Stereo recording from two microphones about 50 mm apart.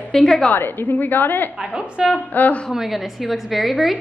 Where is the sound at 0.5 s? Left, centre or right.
Left.